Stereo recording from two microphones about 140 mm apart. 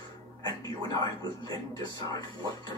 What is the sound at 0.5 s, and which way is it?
Speech, 30° left (ahead or behind).